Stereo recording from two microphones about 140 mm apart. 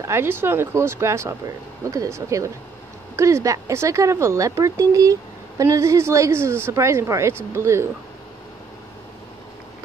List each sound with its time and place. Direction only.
0.0 s a woman's voice: 20° right (ahead or behind)